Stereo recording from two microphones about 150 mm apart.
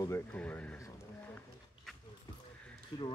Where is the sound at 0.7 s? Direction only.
20° left (ahead or behind).